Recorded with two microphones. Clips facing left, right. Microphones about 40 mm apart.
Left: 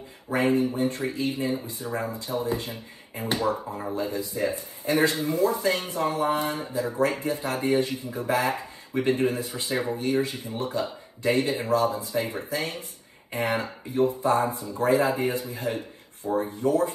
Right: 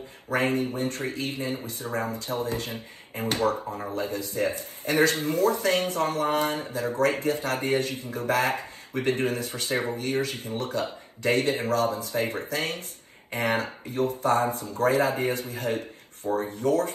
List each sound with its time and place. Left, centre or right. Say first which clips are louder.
0.3 s speech: left 2 dB; right